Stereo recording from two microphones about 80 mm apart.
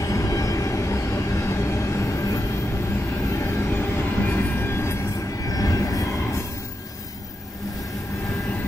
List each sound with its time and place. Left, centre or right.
0.0 s vehicle: left
5.5 s train: left